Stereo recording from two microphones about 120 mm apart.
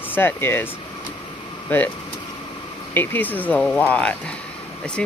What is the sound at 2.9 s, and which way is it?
Speech, 15° left (ahead or behind).